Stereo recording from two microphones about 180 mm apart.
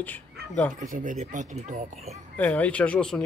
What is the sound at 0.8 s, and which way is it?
Speech, 45° right (ahead or behind).